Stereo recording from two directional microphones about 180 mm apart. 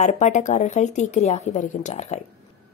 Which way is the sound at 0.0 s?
40° left (ahead or behind).